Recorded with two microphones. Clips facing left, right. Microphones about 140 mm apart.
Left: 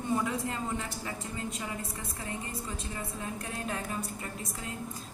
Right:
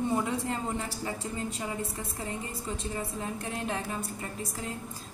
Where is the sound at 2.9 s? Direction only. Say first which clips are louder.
Right 3 dB; 25° right (ahead or behind).